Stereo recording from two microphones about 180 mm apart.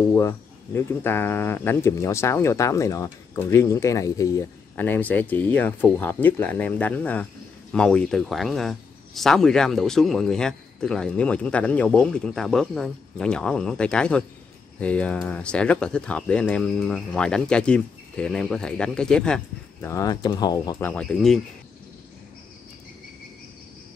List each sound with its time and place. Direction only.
0.1 s speech: 15° left (ahead or behind)
20.9 s speech: 5° left (ahead or behind)